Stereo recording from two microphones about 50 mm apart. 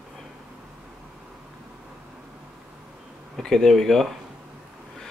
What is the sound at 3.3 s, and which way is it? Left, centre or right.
Speech, centre.